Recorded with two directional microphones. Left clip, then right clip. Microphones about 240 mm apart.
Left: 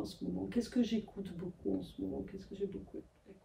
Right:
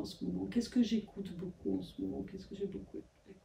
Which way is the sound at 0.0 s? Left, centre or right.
Centre.